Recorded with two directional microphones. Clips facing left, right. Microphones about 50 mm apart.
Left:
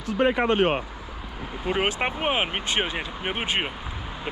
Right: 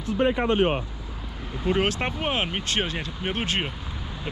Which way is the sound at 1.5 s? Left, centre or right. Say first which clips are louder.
Right 1 dB; centre.